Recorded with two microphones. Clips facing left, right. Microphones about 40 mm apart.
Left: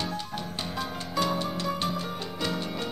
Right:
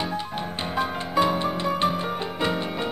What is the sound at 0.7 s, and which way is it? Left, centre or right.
Music, right.